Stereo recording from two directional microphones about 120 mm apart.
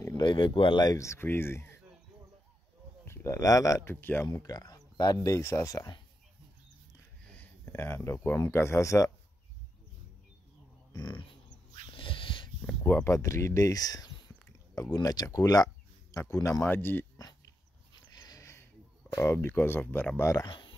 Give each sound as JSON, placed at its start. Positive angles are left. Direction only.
{"t": 0.2, "sound": "speech", "side_deg": 40}
{"t": 3.1, "sound": "speech", "side_deg": 20}
{"t": 3.9, "sound": "speech", "side_deg": 15}
{"t": 7.3, "sound": "speech", "side_deg": 20}
{"t": 10.9, "sound": "speech", "side_deg": 35}
{"t": 11.8, "sound": "a sound", "side_deg": 45}
{"t": 12.6, "sound": "speech", "side_deg": 15}
{"t": 18.1, "sound": "a sound", "side_deg": 35}
{"t": 19.1, "sound": "speech", "side_deg": 20}
{"t": 20.4, "sound": "a sound", "side_deg": 40}